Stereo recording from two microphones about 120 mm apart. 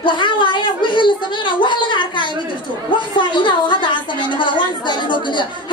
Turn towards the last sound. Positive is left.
turn(degrees=40)  # may be behind; listen again after turning